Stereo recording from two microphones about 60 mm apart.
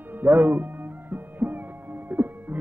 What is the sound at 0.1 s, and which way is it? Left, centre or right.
Music, right.